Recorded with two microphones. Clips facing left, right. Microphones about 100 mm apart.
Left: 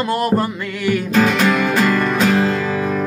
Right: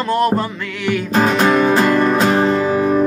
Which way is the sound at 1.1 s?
35° right (ahead or behind).